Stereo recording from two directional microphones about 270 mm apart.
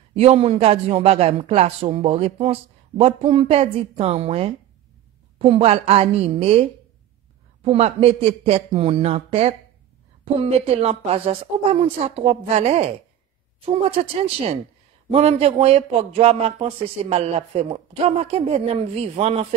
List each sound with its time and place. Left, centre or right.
0.1 s speech: right
15.0 s speech: right